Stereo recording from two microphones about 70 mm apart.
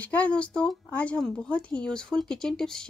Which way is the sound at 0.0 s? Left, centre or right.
Left.